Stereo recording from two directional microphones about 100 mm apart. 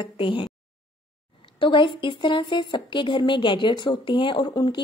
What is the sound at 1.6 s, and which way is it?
A woman's voice, 55° left (ahead or behind).